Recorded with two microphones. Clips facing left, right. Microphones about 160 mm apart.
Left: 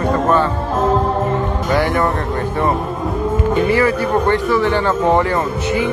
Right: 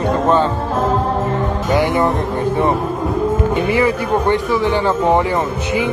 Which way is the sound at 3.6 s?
15° right (ahead or behind).